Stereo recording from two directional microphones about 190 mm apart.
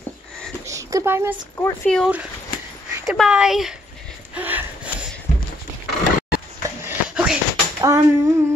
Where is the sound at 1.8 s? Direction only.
5° left (ahead or behind).